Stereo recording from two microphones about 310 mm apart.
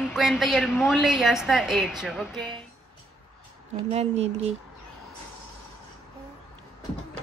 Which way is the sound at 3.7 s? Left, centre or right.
Centre.